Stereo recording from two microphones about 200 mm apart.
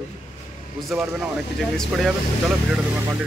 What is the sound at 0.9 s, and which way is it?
Speech, centre (ahead or behind).